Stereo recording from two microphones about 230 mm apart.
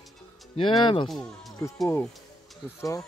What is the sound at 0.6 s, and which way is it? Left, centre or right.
Speech, left.